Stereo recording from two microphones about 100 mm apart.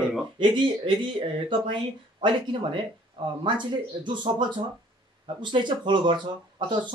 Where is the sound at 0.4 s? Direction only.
55° right (ahead or behind).